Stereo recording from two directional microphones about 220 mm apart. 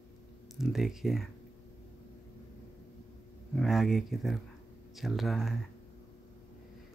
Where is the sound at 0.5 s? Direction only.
Centre (ahead or behind).